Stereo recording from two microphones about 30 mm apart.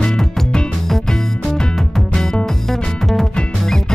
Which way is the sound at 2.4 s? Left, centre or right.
Centre.